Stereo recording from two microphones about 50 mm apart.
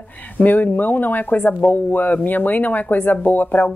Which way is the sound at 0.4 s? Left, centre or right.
Left.